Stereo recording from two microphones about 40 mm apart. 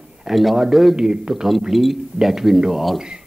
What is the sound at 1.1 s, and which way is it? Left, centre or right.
Speech, centre.